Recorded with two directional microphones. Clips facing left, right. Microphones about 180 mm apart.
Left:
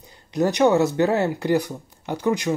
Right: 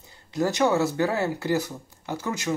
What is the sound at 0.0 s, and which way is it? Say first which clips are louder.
Speech: left 4 dB; 20° left (ahead or behind).